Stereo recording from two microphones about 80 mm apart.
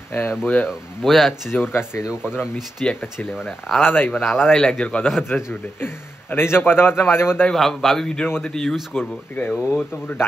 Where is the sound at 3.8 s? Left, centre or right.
Left.